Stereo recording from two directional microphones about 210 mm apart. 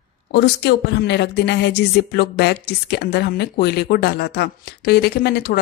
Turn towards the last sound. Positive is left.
turn(degrees=45)  # may be behind; listen again after turning